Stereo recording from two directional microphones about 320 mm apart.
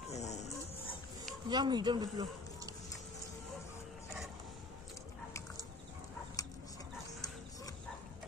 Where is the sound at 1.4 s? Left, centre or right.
Centre.